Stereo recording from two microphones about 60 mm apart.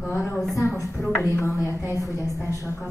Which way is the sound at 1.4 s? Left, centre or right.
Left.